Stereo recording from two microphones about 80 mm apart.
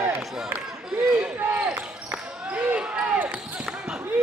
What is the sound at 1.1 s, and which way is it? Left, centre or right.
Basketball bounce, centre.